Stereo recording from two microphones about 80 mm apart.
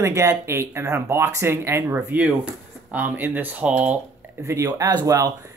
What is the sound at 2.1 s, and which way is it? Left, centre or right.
Speech, centre.